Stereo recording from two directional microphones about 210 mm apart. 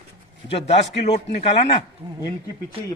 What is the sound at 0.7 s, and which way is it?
A man's voice, 30° left (ahead or behind).